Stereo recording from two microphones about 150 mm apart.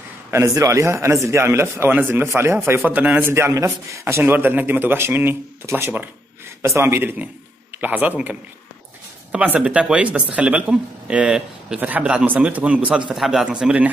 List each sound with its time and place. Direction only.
0.3 s speech: 20° right (ahead or behind)